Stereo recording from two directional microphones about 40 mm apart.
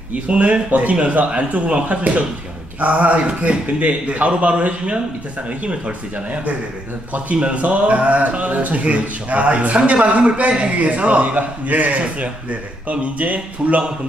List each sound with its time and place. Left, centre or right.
0.1 s speech: right